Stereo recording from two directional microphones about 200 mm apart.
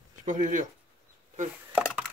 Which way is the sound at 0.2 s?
40° right (ahead or behind).